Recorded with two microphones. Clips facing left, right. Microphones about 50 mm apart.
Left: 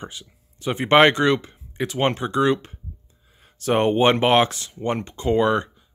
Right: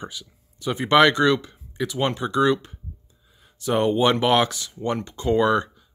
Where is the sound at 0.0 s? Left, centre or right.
Left.